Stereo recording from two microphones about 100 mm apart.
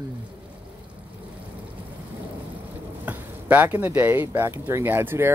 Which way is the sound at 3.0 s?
15° right (ahead or behind).